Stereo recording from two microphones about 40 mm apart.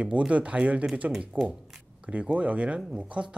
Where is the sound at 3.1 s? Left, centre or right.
Right.